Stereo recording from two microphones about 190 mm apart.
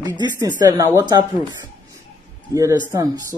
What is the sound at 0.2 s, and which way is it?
Speech, 20° right (ahead or behind).